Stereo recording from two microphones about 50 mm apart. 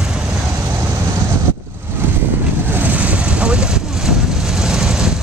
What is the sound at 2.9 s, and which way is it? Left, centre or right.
Vehicle, right.